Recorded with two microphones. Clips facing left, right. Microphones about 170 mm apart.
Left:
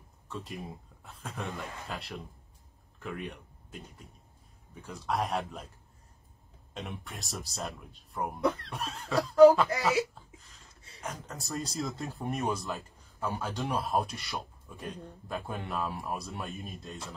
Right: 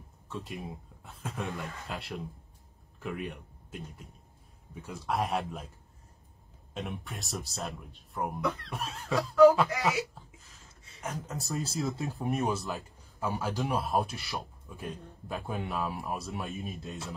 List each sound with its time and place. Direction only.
0.3 s speech: centre (ahead or behind)
6.7 s speech: centre (ahead or behind)
9.3 s a sound: 35° left (ahead or behind)
11.0 s speech: centre (ahead or behind)